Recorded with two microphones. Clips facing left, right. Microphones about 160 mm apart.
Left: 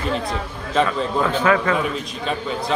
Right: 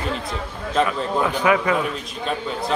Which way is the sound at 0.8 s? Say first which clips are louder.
Left 1 dB; 15° right (ahead or behind).